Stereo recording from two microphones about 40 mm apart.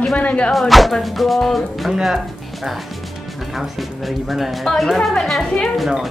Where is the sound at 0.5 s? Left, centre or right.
Centre.